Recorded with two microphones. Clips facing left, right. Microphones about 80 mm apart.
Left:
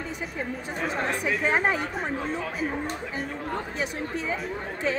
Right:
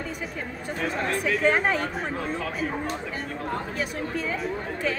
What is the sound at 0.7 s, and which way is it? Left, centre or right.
Speech, centre.